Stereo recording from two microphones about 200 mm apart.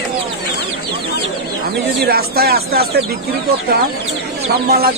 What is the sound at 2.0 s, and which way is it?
Speech, 50° right (ahead or behind).